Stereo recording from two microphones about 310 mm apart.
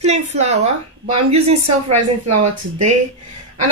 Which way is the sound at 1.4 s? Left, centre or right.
Right.